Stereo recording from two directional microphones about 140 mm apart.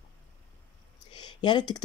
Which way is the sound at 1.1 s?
30° left (ahead or behind).